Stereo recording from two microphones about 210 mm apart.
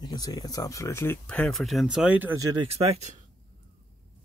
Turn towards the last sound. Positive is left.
turn(degrees=-30)  # may be behind; listen again after turning